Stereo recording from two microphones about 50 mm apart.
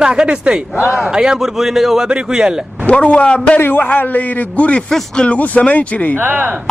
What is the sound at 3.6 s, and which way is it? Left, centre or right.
A man's voice, left.